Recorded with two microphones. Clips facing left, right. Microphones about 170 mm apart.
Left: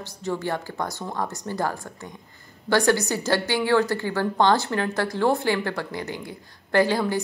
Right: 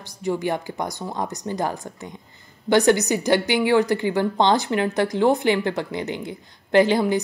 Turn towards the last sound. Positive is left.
turn(degrees=-20)  # may be behind; listen again after turning